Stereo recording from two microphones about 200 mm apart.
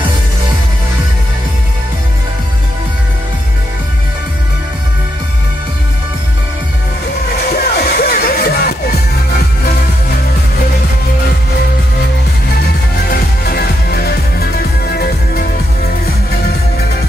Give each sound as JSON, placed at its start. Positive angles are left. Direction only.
{"t": 7.4, "sound": "music", "side_deg": 50}
{"t": 13.1, "sound": "music", "side_deg": 50}